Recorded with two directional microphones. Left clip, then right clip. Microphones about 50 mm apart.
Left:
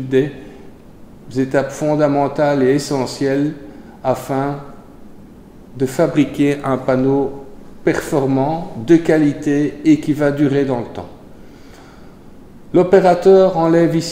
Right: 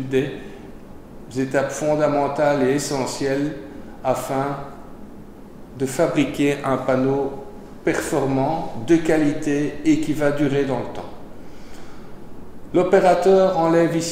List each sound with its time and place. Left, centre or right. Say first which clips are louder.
0.1 s a man's voice: left 6 dB; left
1.3 s a man's voice: left 4 dB; left
5.8 s a man's voice: left 4 dB; left
12.7 s a man's voice: left 4 dB; left